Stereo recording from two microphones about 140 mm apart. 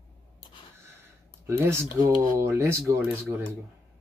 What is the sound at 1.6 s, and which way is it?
Speech, 15° right (ahead or behind).